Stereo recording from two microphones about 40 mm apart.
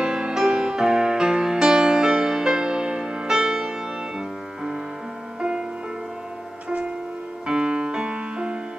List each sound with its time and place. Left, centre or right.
0.0 s music: centre
7.4 s music: centre